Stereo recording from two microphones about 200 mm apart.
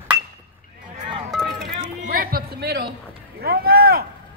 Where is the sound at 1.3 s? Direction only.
Centre (ahead or behind).